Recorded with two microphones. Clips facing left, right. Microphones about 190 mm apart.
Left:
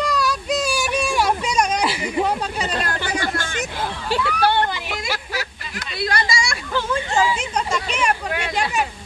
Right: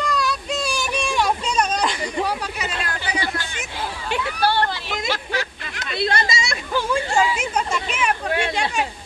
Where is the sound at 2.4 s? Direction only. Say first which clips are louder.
Left 4 dB; 35° left (ahead or behind).